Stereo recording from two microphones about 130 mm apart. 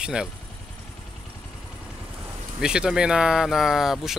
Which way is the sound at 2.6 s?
5° right (ahead or behind).